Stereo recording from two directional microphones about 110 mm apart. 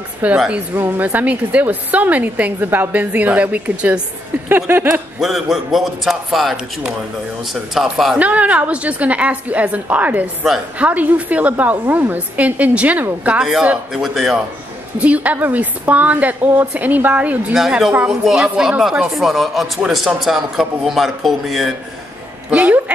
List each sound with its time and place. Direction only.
0.5 s a woman's voice: 20° right (ahead or behind)
4.5 s a sound: 20° right (ahead or behind)
5.2 s speech: centre (ahead or behind)
8.2 s a woman's voice: 15° right (ahead or behind)
22.5 s a woman's voice: 10° right (ahead or behind)